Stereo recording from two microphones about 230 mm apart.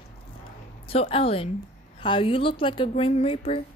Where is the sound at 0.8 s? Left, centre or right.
Left.